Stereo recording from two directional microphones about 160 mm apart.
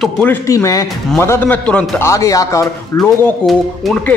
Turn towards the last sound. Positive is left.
turn(degrees=0)  # may be behind; listen again after turning